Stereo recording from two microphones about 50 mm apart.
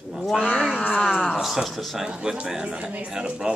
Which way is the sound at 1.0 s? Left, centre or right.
Centre.